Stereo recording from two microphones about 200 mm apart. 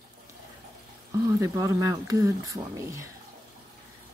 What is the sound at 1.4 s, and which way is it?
Speech, 15° right (ahead or behind).